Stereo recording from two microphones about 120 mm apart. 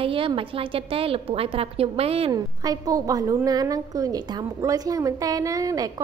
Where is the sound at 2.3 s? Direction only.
30° right (ahead or behind).